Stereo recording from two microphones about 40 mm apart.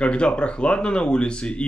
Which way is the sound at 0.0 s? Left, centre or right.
Left.